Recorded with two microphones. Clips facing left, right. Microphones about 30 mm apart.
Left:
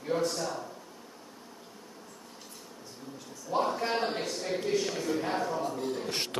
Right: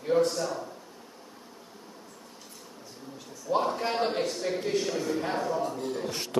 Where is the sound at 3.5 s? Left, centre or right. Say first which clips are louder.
Right 3 dB; centre.